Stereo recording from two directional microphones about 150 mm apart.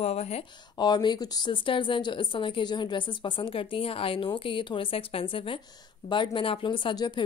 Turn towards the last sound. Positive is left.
turn(degrees=30)  # may be behind; listen again after turning